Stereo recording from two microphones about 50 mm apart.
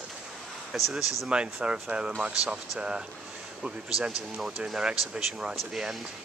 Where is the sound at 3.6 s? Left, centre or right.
Centre.